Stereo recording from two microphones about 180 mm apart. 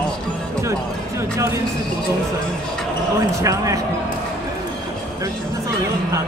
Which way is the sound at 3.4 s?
20° right (ahead or behind).